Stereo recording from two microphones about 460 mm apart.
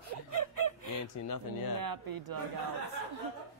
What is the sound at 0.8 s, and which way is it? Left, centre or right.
Speech, left.